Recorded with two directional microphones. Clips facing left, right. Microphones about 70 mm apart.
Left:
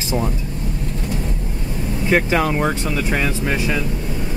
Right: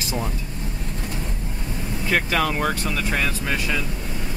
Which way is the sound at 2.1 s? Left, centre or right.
Centre.